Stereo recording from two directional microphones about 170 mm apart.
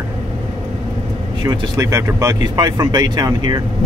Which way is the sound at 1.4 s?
25° right (ahead or behind).